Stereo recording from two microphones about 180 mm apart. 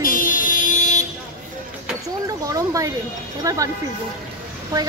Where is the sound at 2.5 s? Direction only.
20° right (ahead or behind).